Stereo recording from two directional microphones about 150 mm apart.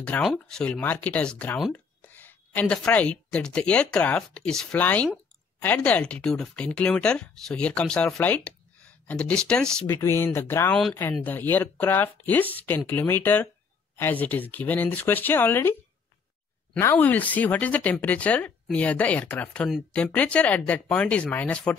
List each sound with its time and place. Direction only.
0.0 s a woman's voice: 5° left (ahead or behind)
9.8 s speech: 15° left (ahead or behind)
16.7 s speech: 10° left (ahead or behind)